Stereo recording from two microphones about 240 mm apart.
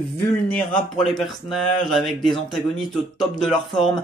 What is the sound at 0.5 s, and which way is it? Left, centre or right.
Speech, centre.